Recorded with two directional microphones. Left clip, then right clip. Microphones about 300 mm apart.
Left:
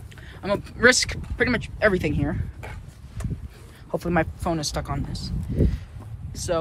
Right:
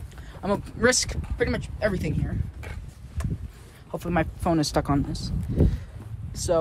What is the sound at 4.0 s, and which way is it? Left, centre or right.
Speech, centre.